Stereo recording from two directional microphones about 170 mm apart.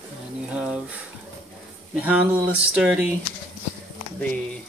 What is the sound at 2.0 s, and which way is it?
Speech, 10° right (ahead or behind).